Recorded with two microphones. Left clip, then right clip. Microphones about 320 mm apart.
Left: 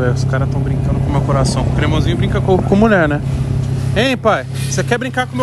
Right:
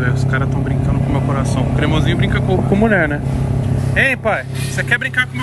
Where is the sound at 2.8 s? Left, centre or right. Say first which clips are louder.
Left 1 dB; right.